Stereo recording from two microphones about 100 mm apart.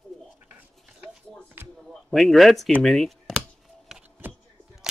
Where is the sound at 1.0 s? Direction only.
20° right (ahead or behind).